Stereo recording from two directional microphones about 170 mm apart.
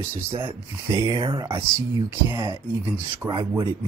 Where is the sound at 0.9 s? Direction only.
25° right (ahead or behind).